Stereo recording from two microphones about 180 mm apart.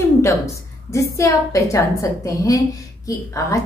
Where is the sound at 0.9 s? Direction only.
15° left (ahead or behind).